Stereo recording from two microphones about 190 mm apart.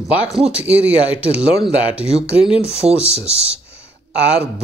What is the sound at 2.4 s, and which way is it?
Speech, 30° left (ahead or behind).